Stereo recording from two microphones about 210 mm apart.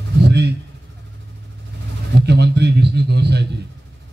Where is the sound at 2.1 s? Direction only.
50° right (ahead or behind).